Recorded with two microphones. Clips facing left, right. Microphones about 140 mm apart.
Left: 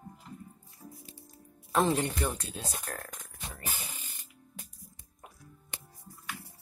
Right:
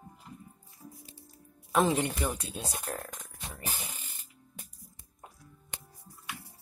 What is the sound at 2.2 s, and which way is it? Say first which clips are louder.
Speech: even; 15° right (ahead or behind).